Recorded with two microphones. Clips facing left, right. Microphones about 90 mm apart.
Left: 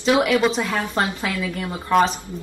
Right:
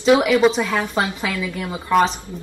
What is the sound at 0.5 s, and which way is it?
A woman's voice, centre (ahead or behind).